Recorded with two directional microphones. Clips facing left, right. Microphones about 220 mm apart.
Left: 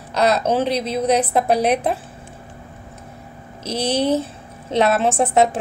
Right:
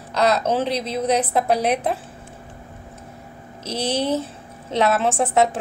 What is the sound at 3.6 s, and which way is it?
A woman's voice, 15° left (ahead or behind).